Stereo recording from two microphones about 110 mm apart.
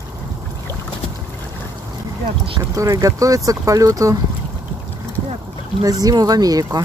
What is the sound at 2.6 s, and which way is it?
Speech, 30° right (ahead or behind).